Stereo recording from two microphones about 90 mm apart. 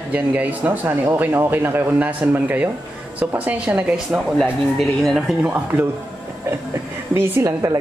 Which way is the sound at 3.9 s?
5° right (ahead or behind).